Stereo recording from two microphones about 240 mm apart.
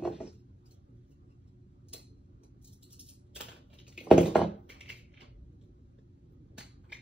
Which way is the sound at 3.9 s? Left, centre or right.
Centre.